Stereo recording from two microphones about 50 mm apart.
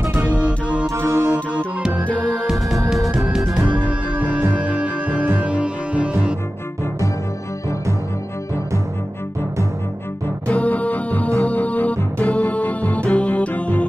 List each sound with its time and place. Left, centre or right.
0.2 s music: right
0.9 s music: right
3.5 s music: right
10.5 s music: left